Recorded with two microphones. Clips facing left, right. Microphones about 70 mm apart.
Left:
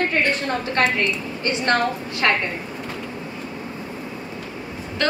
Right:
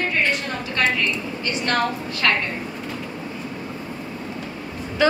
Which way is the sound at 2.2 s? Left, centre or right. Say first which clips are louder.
Left 1 dB; left.